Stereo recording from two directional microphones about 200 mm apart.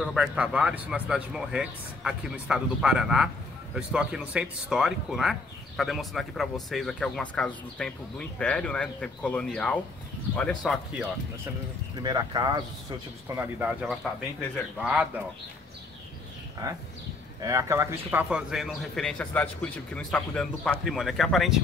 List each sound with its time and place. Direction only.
0.0 s speech: 5° right (ahead or behind)
12.0 s speech: 20° right (ahead or behind)
13.4 s speech: 5° right (ahead or behind)
16.6 s speech: 20° right (ahead or behind); by 21.5 s centre (ahead or behind)